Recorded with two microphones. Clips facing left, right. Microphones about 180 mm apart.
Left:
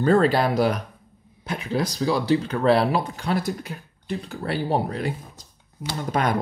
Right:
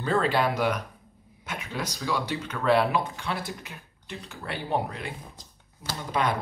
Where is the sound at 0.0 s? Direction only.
40° left (ahead or behind).